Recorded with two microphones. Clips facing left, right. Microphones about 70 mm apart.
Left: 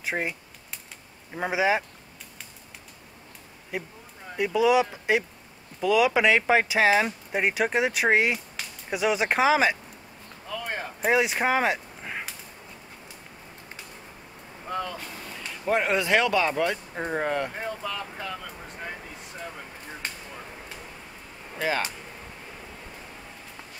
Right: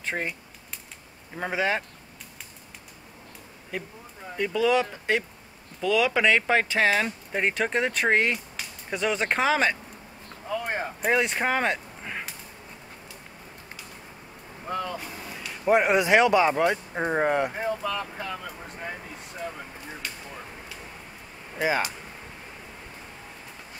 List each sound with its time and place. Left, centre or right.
0.0 s speech: centre
3.7 s speech: centre
10.5 s a sound: right
11.0 s speech: centre
14.7 s speech: centre
17.6 s vehicle: centre
20.0 s a sound: left
21.5 s speech: centre